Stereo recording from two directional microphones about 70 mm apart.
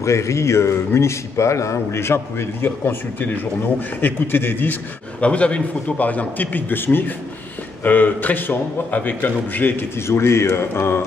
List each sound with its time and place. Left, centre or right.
0.0 s a man's voice: left
5.2 s a man's voice: centre; by 11.1 s left